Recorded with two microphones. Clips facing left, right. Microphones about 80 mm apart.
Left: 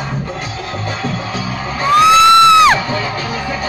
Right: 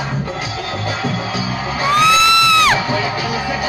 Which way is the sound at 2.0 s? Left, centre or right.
Left.